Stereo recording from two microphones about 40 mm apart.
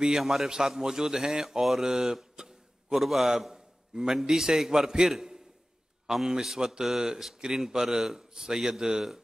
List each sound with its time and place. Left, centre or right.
0.2 s a man's voice: centre
3.9 s a man's voice: centre